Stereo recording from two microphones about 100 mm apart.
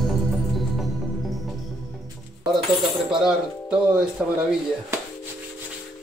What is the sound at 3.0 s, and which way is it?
Speech, 5° right (ahead or behind).